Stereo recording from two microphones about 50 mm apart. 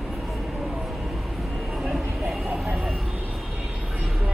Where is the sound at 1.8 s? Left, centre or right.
Centre.